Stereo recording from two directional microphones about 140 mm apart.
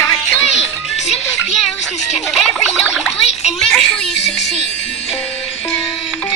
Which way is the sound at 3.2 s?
50° left (ahead or behind).